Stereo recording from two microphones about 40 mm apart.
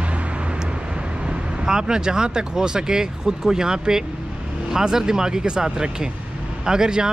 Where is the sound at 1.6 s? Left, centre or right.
Centre.